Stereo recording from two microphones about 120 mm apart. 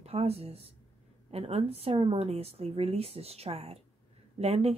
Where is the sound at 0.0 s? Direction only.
60° right (ahead or behind).